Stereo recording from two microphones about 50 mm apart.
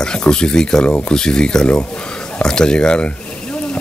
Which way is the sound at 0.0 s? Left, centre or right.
Centre.